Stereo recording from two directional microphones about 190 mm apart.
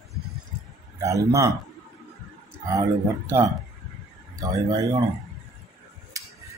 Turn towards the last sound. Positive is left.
turn(degrees=-20)  # may be behind; listen again after turning